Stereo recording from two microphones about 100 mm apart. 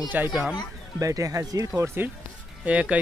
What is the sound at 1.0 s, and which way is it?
Speech, 35° right (ahead or behind).